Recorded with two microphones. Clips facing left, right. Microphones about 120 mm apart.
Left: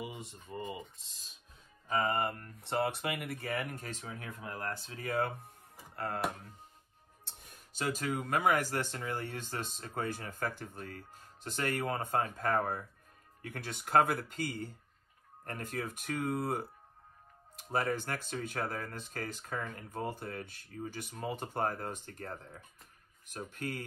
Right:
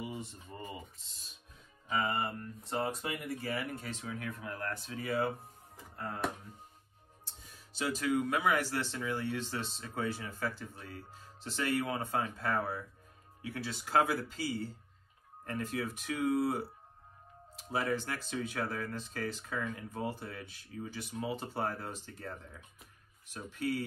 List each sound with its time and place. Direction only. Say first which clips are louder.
0.0 s speech: right 1 dB; 15° left (ahead or behind)
1.9 s speech: left 2 dB; 45° left (ahead or behind); by 4.7 s 25° left (ahead or behind)
4.8 s speech: right 1 dB; 45° left (ahead or behind)
5.9 s speech: left 3 dB; 75° left (ahead or behind)
7.2 s speech: left 1 dB; 60° left (ahead or behind); by 16.6 s 45° left (ahead or behind)
17.7 s speech: left 1 dB; 50° left (ahead or behind)
23.3 s speech: right 4 dB; 50° left (ahead or behind)